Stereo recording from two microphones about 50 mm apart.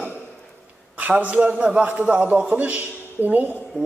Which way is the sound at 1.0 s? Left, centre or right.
Right.